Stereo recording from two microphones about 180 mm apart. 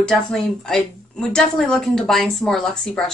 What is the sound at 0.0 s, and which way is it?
Speech, 5° left (ahead or behind).